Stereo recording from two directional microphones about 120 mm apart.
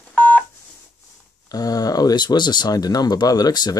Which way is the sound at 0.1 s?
10° left (ahead or behind).